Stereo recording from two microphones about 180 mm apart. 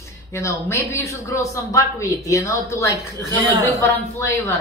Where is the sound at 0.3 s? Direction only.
15° left (ahead or behind).